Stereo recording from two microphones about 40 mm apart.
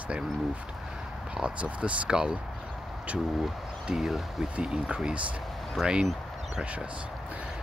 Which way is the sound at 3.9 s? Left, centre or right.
Centre.